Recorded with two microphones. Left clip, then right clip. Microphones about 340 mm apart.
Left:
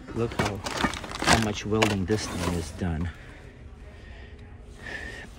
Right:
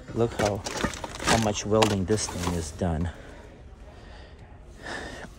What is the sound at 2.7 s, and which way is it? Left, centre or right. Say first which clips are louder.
Speech: right 4 dB; centre.